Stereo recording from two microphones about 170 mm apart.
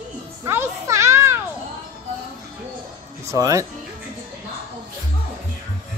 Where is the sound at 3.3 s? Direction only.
20° right (ahead or behind).